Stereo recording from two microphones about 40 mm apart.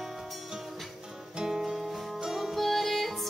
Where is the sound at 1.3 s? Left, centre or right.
Centre.